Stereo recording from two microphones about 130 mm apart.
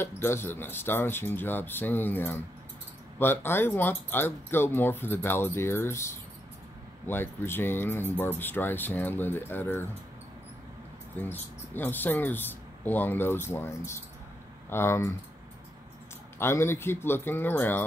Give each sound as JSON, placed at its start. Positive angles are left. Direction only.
{"t": 0.0, "sound": "speech", "side_deg": 20}
{"t": 11.1, "sound": "speech", "side_deg": 15}
{"t": 16.3, "sound": "speech", "side_deg": 20}